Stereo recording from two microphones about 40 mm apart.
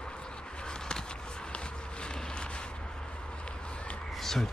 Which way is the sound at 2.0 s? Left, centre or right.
Left.